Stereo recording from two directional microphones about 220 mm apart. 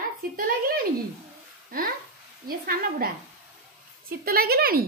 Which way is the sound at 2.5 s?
40° right (ahead or behind).